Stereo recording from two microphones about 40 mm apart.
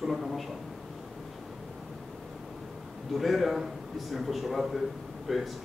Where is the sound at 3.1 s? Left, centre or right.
Centre.